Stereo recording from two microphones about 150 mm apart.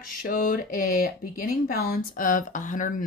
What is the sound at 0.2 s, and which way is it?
Speech, 65° left (ahead or behind).